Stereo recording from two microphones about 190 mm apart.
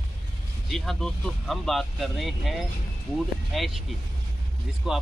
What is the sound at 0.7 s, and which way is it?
Speech, centre (ahead or behind).